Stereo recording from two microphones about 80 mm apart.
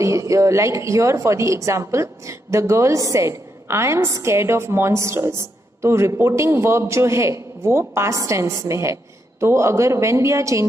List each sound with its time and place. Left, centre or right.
0.0 s a woman's voice: right